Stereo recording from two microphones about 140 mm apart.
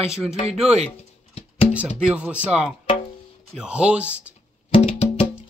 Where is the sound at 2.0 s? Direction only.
10° right (ahead or behind).